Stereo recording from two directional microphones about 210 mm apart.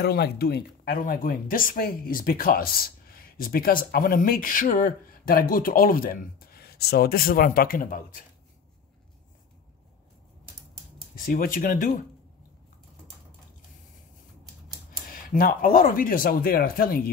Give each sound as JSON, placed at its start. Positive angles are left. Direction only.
{"t": 0.0, "sound": "speech", "side_deg": 50}
{"t": 11.1, "sound": "speech", "side_deg": 40}
{"t": 14.9, "sound": "speech", "side_deg": 40}